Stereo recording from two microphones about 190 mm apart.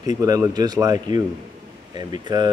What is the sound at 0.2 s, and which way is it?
Speech, 20° right (ahead or behind).